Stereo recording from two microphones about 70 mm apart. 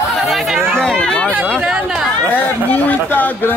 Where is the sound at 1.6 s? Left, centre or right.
Centre.